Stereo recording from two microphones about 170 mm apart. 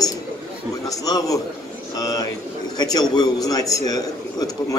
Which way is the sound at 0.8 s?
20° left (ahead or behind).